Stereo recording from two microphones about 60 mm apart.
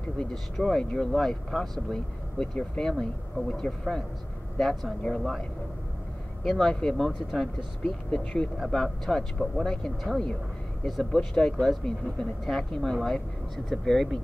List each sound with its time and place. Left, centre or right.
0.3 s speech: centre
6.4 s speech: centre
7.1 s speech: centre
7.8 s speech: centre